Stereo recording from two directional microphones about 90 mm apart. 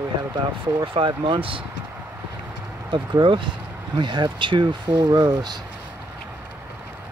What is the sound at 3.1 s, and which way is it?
Speech, 60° right (ahead or behind).